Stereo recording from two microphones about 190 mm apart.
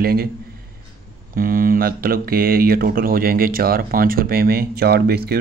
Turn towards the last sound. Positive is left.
turn(degrees=-55)  # may be behind; listen again after turning